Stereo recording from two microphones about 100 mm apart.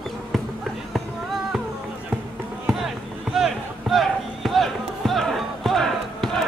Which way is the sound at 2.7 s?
Centre (ahead or behind).